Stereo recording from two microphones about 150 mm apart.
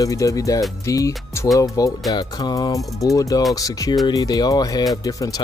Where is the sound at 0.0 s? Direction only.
20° left (ahead or behind).